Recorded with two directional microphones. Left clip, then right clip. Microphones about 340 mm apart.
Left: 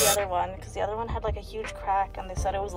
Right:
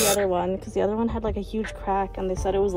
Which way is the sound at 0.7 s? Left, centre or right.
Centre.